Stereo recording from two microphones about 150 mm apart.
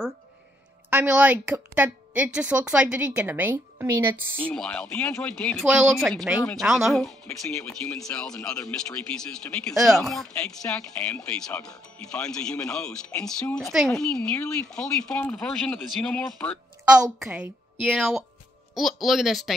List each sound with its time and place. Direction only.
0.8 s a woman's voice: 10° right (ahead or behind)
4.4 s speech: 10° left (ahead or behind)
16.8 s a woman's voice: 5° right (ahead or behind)